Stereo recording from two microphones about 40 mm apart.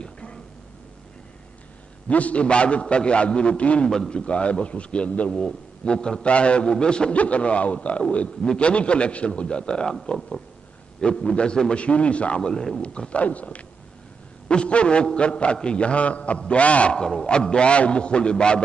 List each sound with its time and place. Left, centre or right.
0.0 s a sound: left
2.0 s a man's voice: left
5.9 s a man's voice: left
11.0 s a man's voice: left
11.8 s a man's voice: left
12.4 s a man's voice: centre
13.2 s a man's voice: left